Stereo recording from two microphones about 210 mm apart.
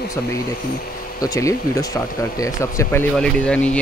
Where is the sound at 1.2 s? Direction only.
15° left (ahead or behind).